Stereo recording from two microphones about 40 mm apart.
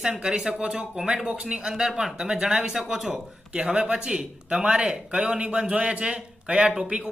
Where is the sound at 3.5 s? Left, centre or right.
Right.